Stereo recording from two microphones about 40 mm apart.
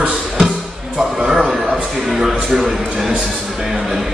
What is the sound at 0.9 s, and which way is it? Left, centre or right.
A man's voice, centre.